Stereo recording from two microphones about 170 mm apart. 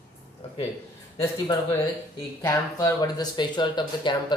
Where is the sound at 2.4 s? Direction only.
20° left (ahead or behind).